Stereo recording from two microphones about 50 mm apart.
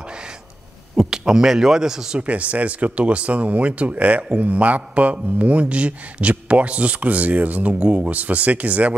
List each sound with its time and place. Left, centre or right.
0.9 s speech: centre
2.1 s speech: right